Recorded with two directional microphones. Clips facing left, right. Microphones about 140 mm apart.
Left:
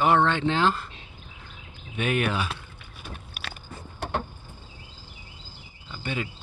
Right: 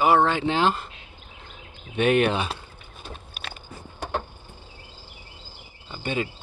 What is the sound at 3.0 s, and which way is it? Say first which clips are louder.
Biting: right 1 dB; 25° right (ahead or behind).